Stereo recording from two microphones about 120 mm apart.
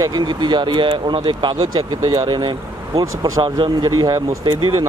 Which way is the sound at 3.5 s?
40° right (ahead or behind).